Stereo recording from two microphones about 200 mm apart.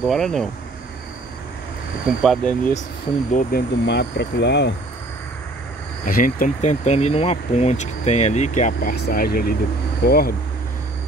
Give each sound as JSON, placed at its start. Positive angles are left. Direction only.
{"t": 0.0, "sound": "speech", "side_deg": 0}
{"t": 2.2, "sound": "speech", "side_deg": 5}
{"t": 3.3, "sound": "speech", "side_deg": 55}
{"t": 6.0, "sound": "speech", "side_deg": 45}
{"t": 8.9, "sound": "speech", "side_deg": 50}